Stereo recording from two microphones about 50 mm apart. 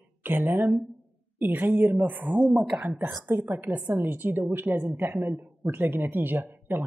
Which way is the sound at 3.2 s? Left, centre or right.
Right.